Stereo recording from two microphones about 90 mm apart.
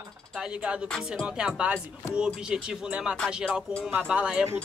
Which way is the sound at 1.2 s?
10° right (ahead or behind).